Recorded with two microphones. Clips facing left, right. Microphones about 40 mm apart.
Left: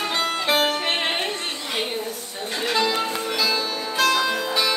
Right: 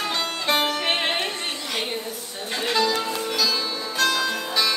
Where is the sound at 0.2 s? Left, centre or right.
Centre.